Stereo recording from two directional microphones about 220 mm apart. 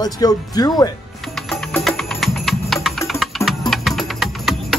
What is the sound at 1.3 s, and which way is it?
Music, centre (ahead or behind).